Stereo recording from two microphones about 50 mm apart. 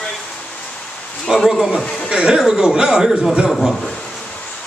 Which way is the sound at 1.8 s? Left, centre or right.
Centre.